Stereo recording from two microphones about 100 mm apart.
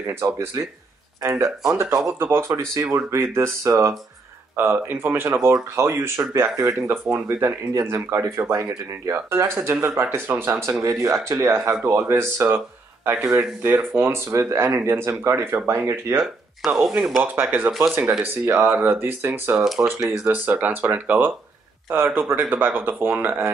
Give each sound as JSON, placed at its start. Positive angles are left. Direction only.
{"t": 0.0, "sound": "speech", "side_deg": -25}
{"t": 1.7, "sound": "speech", "side_deg": -30}
{"t": 16.6, "sound": "speech", "side_deg": 0}
{"t": 17.2, "sound": "speech", "side_deg": -15}
{"t": 19.6, "sound": "speech", "side_deg": 0}
{"t": 20.2, "sound": "speech", "side_deg": -20}